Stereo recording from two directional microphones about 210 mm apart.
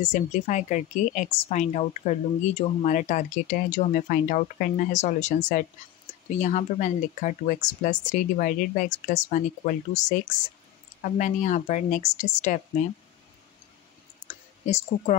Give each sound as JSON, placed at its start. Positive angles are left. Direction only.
{"t": 0.0, "sound": "a woman's voice", "side_deg": 35}
{"t": 14.2, "sound": "clicking", "side_deg": 35}